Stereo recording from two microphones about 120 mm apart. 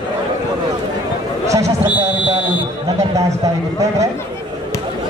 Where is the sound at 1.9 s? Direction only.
15° right (ahead or behind).